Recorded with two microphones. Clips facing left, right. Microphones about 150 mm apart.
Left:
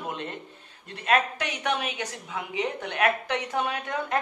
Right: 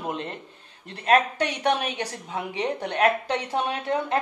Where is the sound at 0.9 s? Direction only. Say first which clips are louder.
Right 4 dB; 35° right (ahead or behind).